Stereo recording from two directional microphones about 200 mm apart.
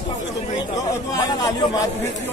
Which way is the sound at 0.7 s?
15° left (ahead or behind).